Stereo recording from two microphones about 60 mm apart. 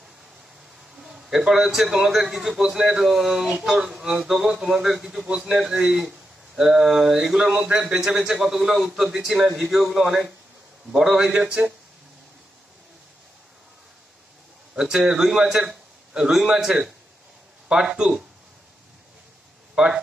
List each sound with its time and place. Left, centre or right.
0.9 s a sound: centre
1.5 s a man's voice: centre
14.8 s a man's voice: centre
19.7 s speech: centre